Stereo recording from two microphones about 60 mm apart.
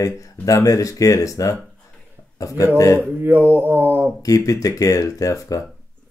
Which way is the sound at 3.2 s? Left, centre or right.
Right.